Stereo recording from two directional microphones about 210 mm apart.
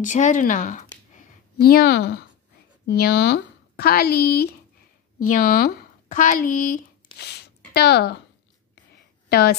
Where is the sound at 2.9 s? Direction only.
50° left (ahead or behind).